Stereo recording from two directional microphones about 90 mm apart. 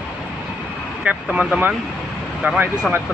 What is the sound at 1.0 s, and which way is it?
Speech, 15° right (ahead or behind).